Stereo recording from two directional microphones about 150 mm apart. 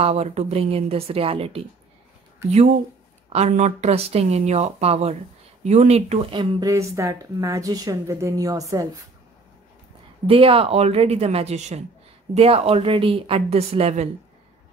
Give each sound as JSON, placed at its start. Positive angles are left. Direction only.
{"t": 0.0, "sound": "speech", "side_deg": -45}
{"t": 3.3, "sound": "speech", "side_deg": -45}
{"t": 6.3, "sound": "speech", "side_deg": -35}
{"t": 6.6, "sound": "a woman's voice", "side_deg": -20}
{"t": 10.2, "sound": "speech", "side_deg": -40}